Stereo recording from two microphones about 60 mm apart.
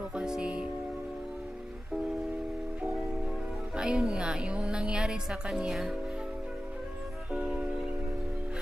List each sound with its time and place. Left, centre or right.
0.1 s music: centre
3.7 s a woman's voice: centre
7.3 s music: centre